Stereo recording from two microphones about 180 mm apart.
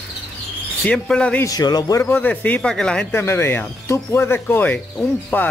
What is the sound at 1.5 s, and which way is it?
Speech, 20° left (ahead or behind).